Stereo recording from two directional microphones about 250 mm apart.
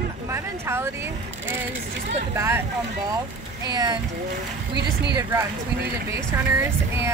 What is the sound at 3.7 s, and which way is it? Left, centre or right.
Speech, centre.